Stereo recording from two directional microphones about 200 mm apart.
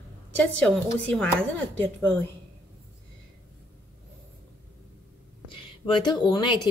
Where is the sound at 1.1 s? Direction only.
5° left (ahead or behind).